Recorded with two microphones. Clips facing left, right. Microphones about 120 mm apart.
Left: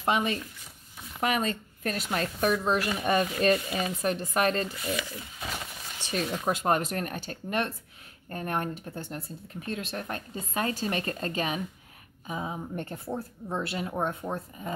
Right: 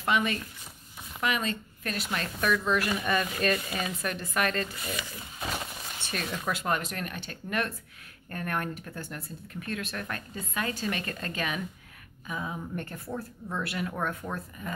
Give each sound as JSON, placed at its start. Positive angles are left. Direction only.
{"t": 0.0, "sound": "speech", "side_deg": 30}
{"t": 1.2, "sound": "speech", "side_deg": 40}
{"t": 6.1, "sound": "speech", "side_deg": 35}